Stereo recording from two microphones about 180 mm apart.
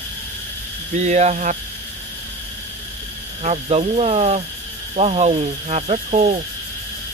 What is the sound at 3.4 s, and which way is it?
Speech, 35° right (ahead or behind).